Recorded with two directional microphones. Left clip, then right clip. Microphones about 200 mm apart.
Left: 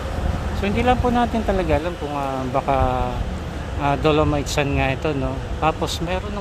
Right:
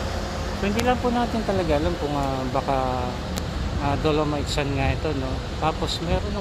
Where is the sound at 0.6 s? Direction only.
20° left (ahead or behind).